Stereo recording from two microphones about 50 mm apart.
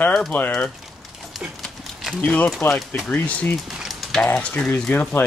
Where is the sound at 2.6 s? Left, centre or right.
Left.